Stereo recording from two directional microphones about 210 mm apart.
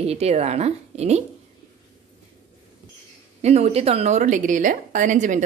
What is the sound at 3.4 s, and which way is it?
A woman's voice, 30° right (ahead or behind).